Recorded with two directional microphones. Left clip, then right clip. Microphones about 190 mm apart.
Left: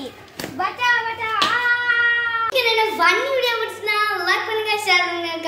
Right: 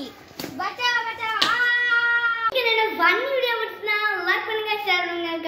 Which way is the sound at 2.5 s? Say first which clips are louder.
Left 3 dB; 10° left (ahead or behind).